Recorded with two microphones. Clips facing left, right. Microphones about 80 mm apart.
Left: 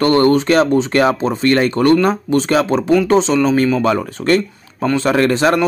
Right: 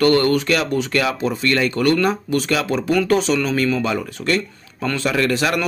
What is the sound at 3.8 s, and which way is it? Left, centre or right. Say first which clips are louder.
Speech: left 6 dB; left.